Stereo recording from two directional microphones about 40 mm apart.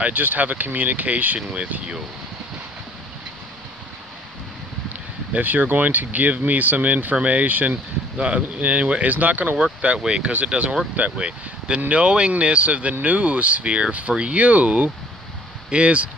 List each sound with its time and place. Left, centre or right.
0.1 s speech: right
5.3 s speech: right
8.2 s speech: right
9.6 s speech: right